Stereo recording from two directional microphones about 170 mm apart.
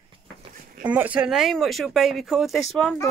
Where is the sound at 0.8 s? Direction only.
10° right (ahead or behind).